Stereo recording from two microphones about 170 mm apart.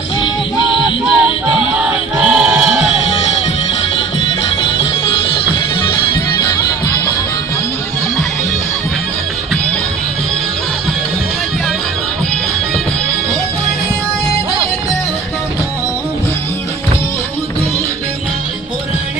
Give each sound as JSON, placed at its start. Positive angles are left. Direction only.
{"t": 1.0, "sound": "music", "side_deg": -5}
{"t": 1.8, "sound": "crowd", "side_deg": -5}
{"t": 5.0, "sound": "music", "side_deg": 30}